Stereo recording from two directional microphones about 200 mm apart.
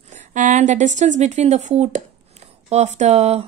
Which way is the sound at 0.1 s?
40° right (ahead or behind).